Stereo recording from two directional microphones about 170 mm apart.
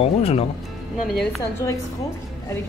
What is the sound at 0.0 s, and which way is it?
Speech, 35° left (ahead or behind).